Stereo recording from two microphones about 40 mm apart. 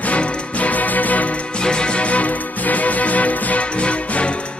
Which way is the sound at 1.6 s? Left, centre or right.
Left.